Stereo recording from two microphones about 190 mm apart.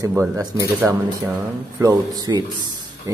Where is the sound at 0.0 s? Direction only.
15° right (ahead or behind).